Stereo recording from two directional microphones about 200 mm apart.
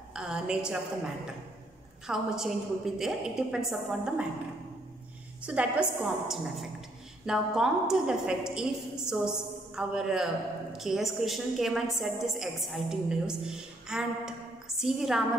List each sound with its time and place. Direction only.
0.1 s a sound: 5° right (ahead or behind)
2.0 s a woman's voice: 5° right (ahead or behind)
5.4 s a woman's voice: 5° right (ahead or behind)